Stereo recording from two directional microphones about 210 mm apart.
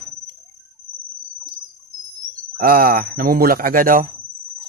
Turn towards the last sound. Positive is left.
turn(degrees=-40)  # may be behind; listen again after turning